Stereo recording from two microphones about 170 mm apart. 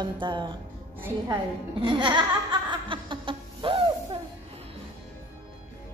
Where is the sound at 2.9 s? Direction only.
30° right (ahead or behind).